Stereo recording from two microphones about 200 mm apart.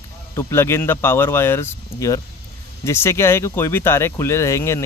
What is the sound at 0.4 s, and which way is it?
Speech, 15° left (ahead or behind).